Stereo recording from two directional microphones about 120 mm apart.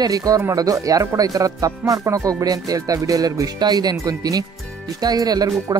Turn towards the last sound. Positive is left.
turn(degrees=-30)  # may be behind; listen again after turning